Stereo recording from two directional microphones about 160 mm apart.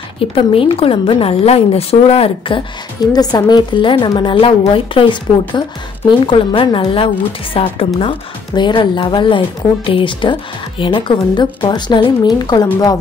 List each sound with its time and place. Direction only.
0.2 s a woman's voice: 35° left (ahead or behind)